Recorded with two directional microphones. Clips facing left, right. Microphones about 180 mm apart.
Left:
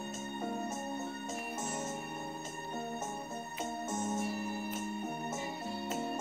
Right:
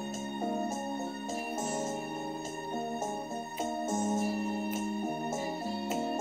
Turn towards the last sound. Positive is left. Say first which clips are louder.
# right 5 dB
turn(degrees=-30)  # may be behind; listen again after turning